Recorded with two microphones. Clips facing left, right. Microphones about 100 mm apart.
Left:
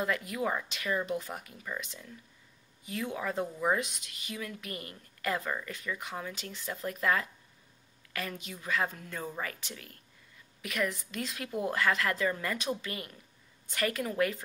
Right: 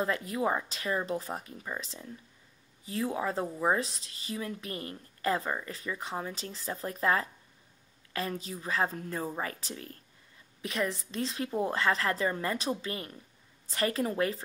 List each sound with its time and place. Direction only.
0.0 s speech: 30° right (ahead or behind)